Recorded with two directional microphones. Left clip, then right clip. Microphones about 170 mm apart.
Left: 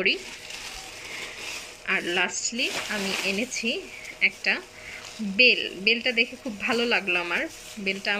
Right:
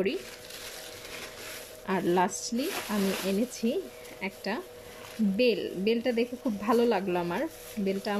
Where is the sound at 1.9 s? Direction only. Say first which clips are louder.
Left 2 dB; 30° right (ahead or behind).